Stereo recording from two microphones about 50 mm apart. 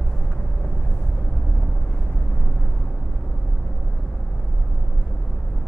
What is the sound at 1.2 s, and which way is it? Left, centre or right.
Vehicle, centre.